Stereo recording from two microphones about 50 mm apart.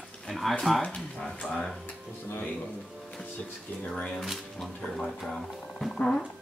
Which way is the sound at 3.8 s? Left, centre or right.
Left.